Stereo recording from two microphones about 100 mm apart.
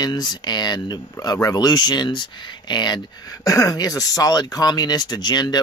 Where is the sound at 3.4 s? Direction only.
35° left (ahead or behind).